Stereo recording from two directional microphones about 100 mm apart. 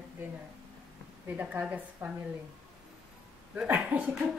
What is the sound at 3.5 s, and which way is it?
Speech, 15° right (ahead or behind).